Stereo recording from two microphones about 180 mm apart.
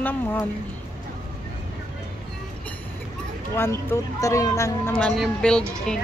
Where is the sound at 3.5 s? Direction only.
15° left (ahead or behind).